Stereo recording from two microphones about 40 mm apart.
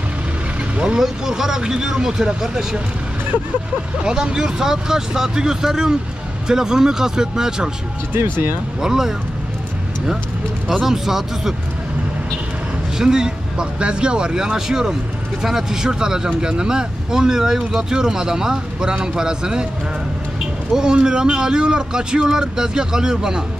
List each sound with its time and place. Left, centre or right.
0.9 s speech: centre
4.0 s speech: centre
8.2 s speech: right
8.8 s speech: centre
10.7 s speech: centre
12.9 s speech: centre
20.7 s speech: centre